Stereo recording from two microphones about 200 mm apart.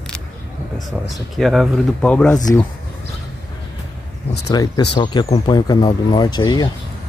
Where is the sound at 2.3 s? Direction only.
20° left (ahead or behind).